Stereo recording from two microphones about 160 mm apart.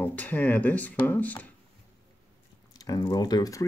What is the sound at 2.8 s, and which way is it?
Speech, 20° left (ahead or behind).